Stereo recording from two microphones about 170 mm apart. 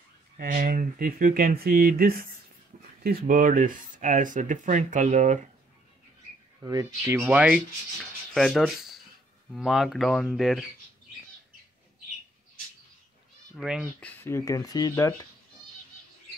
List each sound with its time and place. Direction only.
0.4 s speech: 60° right (ahead or behind)
6.6 s speech: 20° right (ahead or behind)
7.2 s rub: 10° right (ahead or behind)
8.3 s speech: centre (ahead or behind)
13.6 s speech: centre (ahead or behind)
13.9 s speech: 10° left (ahead or behind)